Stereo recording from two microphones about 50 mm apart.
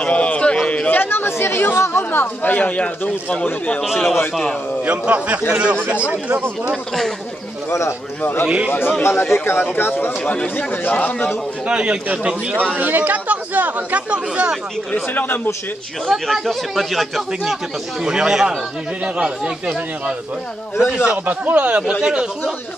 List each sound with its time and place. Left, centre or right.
0.0 s a sound: left
0.7 s chatter: left
0.9 s speech: left
2.0 s speech: left
3.8 s speech: centre
4.8 s speech: right
8.5 s speech: right
9.0 s speech: left
10.2 s speech: left
11.6 s speech: right
12.7 s speech: right
15.1 s speech: left
16.1 s speech: centre
18.0 s speech: centre